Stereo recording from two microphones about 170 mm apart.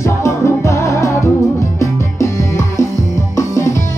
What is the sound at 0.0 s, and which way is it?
Music, 15° left (ahead or behind).